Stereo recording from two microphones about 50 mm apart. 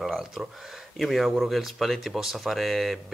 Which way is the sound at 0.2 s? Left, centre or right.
Centre.